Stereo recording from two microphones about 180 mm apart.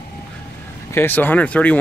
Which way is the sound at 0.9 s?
10° left (ahead or behind).